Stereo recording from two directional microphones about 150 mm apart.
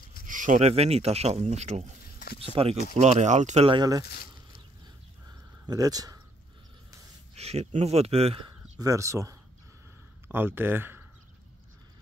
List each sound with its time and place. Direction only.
0.3 s speech: 60° right (ahead or behind)
3.7 s speech: 25° right (ahead or behind)
4.0 s a sound: 90° left
5.7 s speech: 25° right (ahead or behind)
7.3 s speech: 45° right (ahead or behind)
8.7 s a man's voice: 20° right (ahead or behind)